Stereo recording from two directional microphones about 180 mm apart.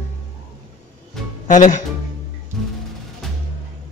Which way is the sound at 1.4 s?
45° left (ahead or behind).